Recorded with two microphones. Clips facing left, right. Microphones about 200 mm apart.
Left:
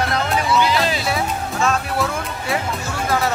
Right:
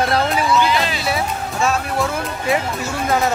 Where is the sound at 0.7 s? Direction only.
Centre (ahead or behind).